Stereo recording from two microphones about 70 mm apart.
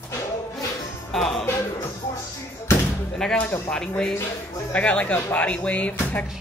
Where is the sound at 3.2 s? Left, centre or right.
Centre.